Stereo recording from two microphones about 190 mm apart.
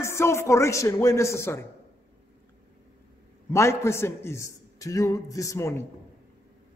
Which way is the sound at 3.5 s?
15° left (ahead or behind).